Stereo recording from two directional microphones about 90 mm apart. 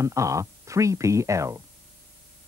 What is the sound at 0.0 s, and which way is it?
Speech, 35° right (ahead or behind).